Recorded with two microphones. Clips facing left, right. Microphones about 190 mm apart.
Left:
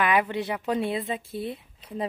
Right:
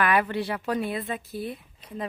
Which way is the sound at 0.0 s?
20° left (ahead or behind).